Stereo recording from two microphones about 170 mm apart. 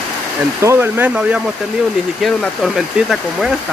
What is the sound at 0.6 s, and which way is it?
Speech, 15° right (ahead or behind).